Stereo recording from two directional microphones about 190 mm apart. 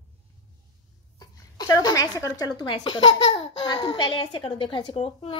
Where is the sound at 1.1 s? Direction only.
20° left (ahead or behind).